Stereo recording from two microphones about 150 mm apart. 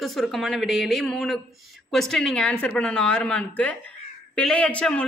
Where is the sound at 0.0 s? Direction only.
Centre (ahead or behind).